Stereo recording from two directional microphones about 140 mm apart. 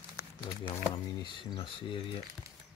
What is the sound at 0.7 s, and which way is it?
Speech, 35° left (ahead or behind).